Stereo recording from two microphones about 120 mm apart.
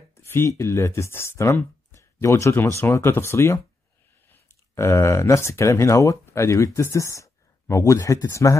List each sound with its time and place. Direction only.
0.1 s speech: 20° left (ahead or behind)